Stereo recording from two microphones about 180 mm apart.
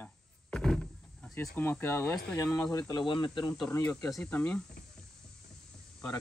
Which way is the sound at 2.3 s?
20° left (ahead or behind).